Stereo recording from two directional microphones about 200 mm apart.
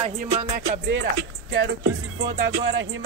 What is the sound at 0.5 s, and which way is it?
Music, 55° right (ahead or behind).